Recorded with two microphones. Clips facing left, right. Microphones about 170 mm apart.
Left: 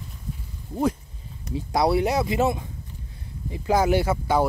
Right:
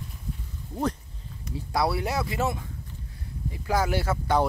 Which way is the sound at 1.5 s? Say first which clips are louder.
Left 5 dB; 20° left (ahead or behind).